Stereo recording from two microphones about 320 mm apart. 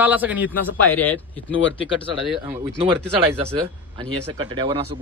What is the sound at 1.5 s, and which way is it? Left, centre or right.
Speech, left.